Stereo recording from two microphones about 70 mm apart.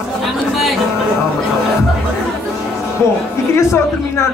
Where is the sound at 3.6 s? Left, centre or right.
Left.